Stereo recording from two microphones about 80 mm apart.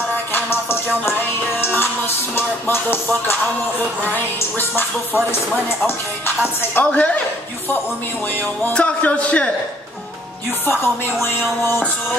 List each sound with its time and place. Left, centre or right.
0.3 s music: left
4.1 s speech: left
6.7 s music: centre
8.7 s music: centre
10.7 s speech: left